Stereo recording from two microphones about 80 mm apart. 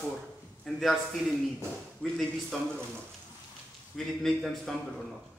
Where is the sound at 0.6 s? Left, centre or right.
Centre.